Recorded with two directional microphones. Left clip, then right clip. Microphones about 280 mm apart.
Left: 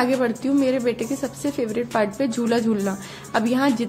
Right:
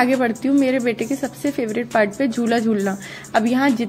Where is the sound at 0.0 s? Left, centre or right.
Centre.